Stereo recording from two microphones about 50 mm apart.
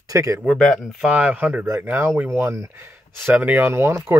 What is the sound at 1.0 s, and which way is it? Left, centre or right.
Speech, right.